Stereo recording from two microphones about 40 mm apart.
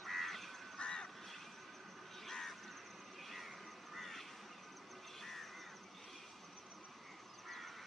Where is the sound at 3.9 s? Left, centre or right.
Centre.